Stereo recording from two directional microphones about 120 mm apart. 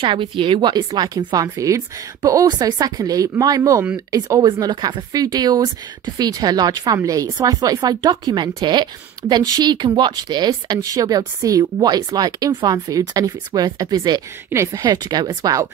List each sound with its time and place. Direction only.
0.0 s speech: 45° right (ahead or behind)
14.5 s speech: 25° right (ahead or behind)